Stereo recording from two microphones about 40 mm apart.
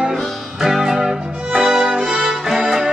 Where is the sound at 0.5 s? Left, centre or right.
Centre.